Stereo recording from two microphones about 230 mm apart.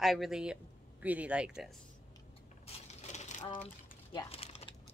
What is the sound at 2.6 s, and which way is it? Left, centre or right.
Coin, left.